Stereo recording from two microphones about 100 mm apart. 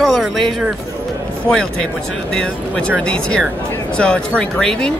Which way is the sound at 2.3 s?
10° left (ahead or behind).